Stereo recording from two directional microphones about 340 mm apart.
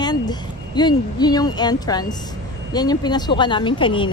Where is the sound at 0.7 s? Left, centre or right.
Centre.